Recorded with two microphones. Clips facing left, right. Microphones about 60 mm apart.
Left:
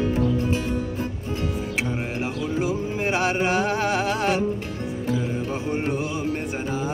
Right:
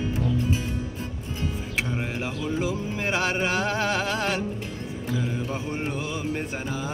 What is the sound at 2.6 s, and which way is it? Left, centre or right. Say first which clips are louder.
Music: left 3 dB; left.